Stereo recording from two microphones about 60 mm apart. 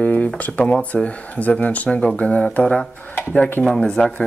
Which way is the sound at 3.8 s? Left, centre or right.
Centre.